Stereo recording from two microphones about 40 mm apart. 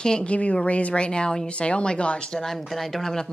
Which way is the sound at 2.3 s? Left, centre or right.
Centre.